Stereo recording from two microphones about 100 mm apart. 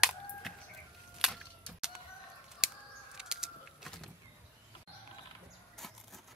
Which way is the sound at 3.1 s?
5° right (ahead or behind).